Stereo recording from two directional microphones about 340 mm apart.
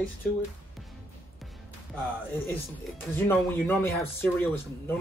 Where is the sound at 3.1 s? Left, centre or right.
Centre.